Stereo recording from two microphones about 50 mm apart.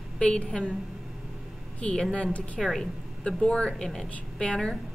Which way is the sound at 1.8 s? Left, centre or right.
Centre.